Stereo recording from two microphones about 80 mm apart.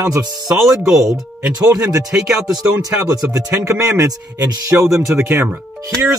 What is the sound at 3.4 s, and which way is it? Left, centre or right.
Speech, right.